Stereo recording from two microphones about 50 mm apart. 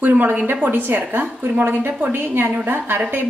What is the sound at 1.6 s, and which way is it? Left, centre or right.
A woman's voice, right.